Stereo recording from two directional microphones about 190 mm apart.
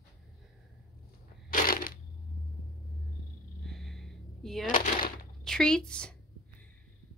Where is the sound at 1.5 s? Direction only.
45° left (ahead or behind).